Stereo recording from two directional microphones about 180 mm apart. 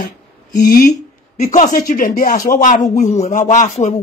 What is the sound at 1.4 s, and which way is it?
Speech, 40° left (ahead or behind).